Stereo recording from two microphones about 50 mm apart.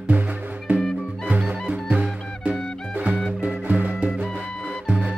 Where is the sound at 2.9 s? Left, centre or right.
Right.